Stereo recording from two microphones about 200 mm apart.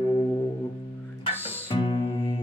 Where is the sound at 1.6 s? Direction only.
25° left (ahead or behind).